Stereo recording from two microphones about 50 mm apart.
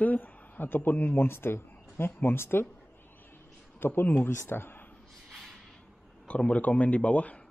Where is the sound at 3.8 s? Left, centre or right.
Left.